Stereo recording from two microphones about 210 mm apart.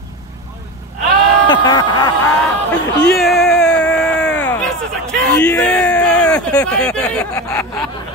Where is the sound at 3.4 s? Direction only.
Centre (ahead or behind).